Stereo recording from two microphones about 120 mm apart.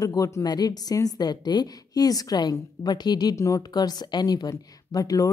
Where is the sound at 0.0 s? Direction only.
30° left (ahead or behind).